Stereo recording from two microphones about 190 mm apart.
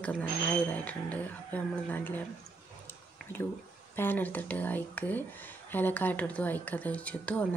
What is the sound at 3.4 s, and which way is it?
Speech, 15° left (ahead or behind).